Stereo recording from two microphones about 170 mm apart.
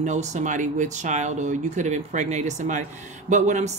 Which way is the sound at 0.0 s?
45° right (ahead or behind).